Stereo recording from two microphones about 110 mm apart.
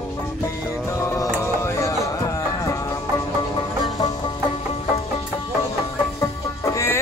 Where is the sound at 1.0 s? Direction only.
30° left (ahead or behind).